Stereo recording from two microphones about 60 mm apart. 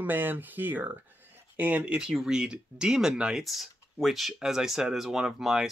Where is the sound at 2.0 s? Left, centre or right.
Centre.